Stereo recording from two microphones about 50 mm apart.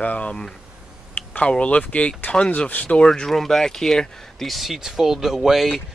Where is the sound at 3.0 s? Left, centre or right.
Centre.